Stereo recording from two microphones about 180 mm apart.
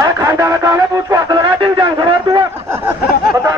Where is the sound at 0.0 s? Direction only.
15° right (ahead or behind).